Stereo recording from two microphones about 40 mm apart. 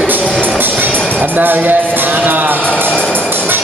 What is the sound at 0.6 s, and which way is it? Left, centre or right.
Music, right.